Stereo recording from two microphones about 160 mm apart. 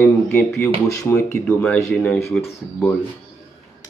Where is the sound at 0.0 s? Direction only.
10° left (ahead or behind).